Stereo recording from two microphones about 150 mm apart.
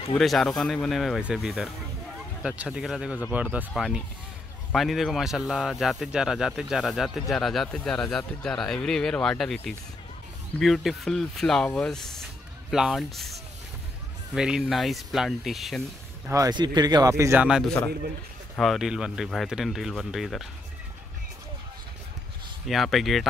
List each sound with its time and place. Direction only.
0.2 s speech: centre (ahead or behind)
16.3 s a man's voice: 25° right (ahead or behind); by 20.4 s centre (ahead or behind)
22.7 s speech: centre (ahead or behind)